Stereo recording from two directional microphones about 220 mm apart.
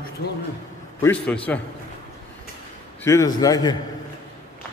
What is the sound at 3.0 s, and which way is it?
Speech, 15° left (ahead or behind).